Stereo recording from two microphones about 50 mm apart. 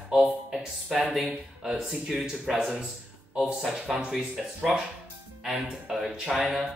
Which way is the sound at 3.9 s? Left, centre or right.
Centre.